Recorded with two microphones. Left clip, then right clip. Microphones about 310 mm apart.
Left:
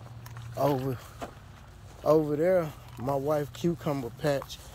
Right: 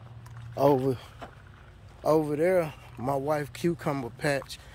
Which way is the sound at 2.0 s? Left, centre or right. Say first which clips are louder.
Even; centre.